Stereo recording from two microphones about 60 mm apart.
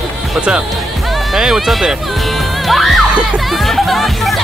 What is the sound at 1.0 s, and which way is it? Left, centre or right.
Music, centre.